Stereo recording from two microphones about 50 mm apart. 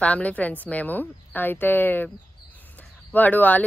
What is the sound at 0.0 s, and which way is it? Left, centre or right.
Speech, left.